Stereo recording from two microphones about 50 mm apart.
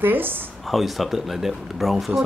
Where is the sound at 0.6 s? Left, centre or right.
Centre.